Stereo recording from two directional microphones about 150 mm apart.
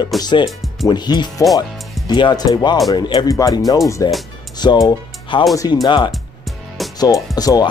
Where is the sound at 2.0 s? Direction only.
30° left (ahead or behind).